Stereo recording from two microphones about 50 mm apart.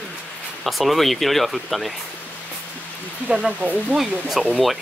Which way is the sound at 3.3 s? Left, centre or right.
Right.